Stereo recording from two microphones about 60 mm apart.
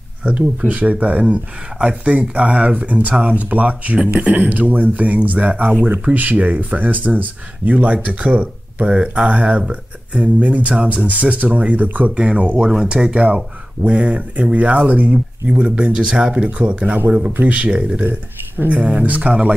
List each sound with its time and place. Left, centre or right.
0.2 s speech: centre